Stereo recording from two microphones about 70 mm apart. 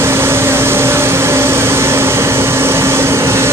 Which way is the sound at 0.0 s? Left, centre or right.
Right.